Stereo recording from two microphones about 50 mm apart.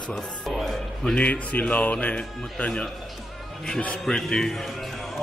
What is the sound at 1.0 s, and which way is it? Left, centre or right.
Speech, left.